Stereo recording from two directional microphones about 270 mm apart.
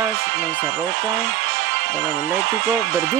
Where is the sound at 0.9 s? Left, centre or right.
Right.